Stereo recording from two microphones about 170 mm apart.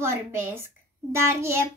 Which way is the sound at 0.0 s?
15° right (ahead or behind).